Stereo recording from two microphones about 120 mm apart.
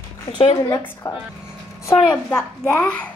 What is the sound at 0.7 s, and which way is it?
Speech, 15° left (ahead or behind).